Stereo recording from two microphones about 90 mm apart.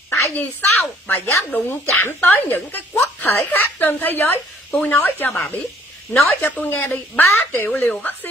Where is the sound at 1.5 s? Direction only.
25° left (ahead or behind).